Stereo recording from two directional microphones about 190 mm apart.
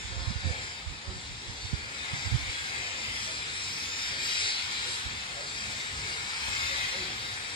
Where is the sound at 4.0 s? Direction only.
25° left (ahead or behind).